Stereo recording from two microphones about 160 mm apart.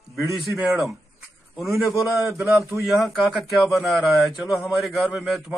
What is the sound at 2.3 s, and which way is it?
Speech, 15° right (ahead or behind).